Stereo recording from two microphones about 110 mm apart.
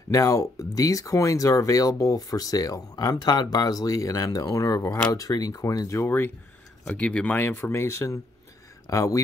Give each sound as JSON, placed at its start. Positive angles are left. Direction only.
{"t": 0.1, "sound": "speech", "side_deg": 30}
{"t": 5.1, "sound": "speech", "side_deg": 35}
{"t": 6.9, "sound": "speech", "side_deg": 10}